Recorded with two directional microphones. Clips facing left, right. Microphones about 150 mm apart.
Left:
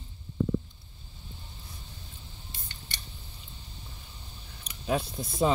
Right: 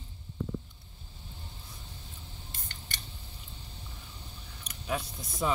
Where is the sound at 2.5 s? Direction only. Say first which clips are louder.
Left 1 dB; 50° right (ahead or behind).